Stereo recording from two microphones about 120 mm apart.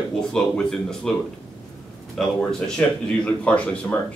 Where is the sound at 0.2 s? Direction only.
5° left (ahead or behind).